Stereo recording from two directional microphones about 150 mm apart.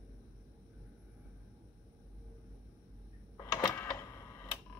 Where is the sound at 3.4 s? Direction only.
25° left (ahead or behind).